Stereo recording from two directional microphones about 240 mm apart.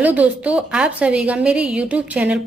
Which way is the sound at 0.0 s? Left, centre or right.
Centre.